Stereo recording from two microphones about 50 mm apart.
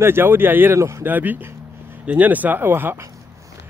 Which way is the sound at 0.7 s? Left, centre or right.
Right.